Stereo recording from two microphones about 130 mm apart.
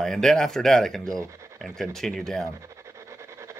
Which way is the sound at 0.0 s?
5° left (ahead or behind).